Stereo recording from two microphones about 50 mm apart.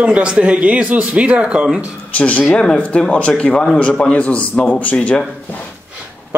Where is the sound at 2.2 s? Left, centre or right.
Left.